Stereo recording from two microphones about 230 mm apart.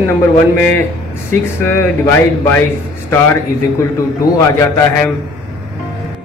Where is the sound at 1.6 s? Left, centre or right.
Centre.